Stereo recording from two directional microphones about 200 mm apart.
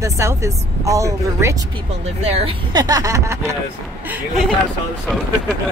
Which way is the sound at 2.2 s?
30° right (ahead or behind).